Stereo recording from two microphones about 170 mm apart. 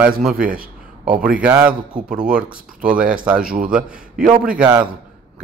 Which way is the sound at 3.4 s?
60° right (ahead or behind).